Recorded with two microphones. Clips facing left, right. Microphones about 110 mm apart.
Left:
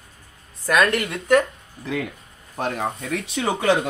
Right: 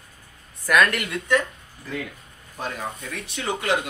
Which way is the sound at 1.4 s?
70° left (ahead or behind).